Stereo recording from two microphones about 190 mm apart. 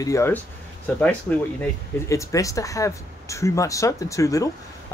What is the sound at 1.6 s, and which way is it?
Speech, 15° left (ahead or behind).